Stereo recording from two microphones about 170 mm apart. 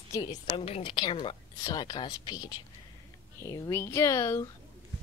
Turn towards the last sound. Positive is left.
turn(degrees=15)  # may be behind; listen again after turning